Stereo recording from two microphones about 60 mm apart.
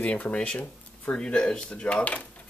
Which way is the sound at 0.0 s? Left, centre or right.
Left.